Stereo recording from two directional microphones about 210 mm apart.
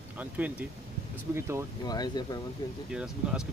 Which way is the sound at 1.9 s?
20° left (ahead or behind).